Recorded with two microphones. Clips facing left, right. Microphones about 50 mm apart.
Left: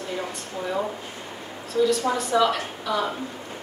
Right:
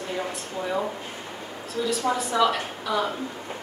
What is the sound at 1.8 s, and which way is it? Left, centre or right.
A woman's voice, centre.